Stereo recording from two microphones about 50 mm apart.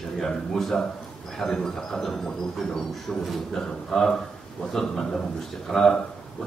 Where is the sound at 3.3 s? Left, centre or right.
Centre.